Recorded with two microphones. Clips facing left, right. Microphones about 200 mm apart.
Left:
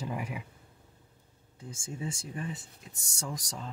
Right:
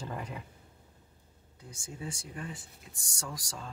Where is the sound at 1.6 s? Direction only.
25° left (ahead or behind).